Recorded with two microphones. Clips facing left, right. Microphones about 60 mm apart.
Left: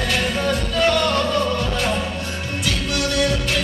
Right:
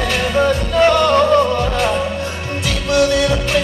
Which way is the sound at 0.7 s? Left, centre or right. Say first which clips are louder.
Right 7 dB; right.